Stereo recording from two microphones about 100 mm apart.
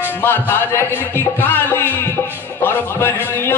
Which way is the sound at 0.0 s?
20° left (ahead or behind).